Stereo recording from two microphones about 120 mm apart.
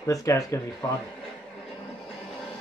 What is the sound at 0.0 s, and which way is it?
Speech, 25° left (ahead or behind).